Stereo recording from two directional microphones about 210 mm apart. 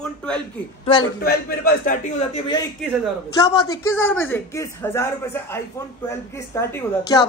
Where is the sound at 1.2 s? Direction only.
45° left (ahead or behind).